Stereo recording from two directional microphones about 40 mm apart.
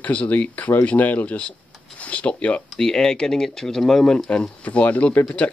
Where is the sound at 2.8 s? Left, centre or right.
Centre.